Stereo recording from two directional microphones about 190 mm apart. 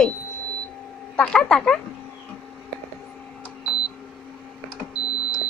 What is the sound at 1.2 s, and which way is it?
Speech, 5° left (ahead or behind).